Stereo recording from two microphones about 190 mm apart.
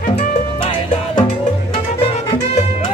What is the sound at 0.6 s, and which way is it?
Music, 25° left (ahead or behind).